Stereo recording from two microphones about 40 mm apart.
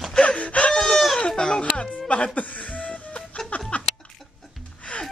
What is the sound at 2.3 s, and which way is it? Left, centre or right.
Music, left.